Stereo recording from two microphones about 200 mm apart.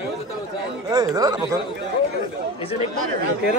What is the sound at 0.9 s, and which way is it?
Speech, 20° right (ahead or behind).